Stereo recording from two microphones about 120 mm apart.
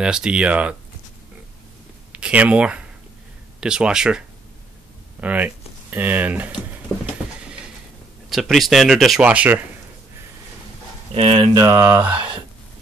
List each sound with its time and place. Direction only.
0.0 s speech: 5° right (ahead or behind)
2.1 s speech: 10° right (ahead or behind)
5.2 s speech: 15° right (ahead or behind)
8.3 s speech: centre (ahead or behind)
9.2 s speech: 10° right (ahead or behind)
11.1 s speech: 50° right (ahead or behind)
11.5 s a sound: 30° right (ahead or behind)